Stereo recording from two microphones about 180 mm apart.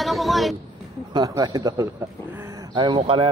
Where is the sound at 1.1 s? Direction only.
20° right (ahead or behind).